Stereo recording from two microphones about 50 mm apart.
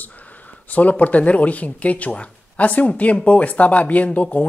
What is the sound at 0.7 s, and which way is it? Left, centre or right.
Speech, left.